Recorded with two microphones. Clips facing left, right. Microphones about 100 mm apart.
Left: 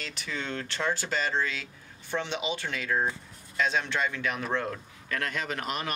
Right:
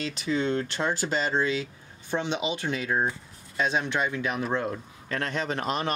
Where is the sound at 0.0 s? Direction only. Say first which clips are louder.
Right 9 dB; 20° right (ahead or behind).